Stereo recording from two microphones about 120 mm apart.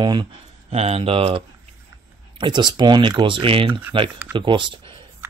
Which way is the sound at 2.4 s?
40° right (ahead or behind).